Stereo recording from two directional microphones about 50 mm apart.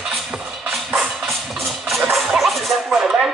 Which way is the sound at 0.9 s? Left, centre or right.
Centre.